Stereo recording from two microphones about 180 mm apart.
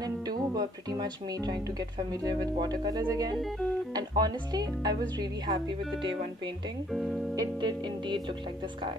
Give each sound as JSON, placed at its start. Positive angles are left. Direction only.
{"t": 0.6, "sound": "speech", "side_deg": -25}
{"t": 6.9, "sound": "speech", "side_deg": 0}
{"t": 7.3, "sound": "speech", "side_deg": -25}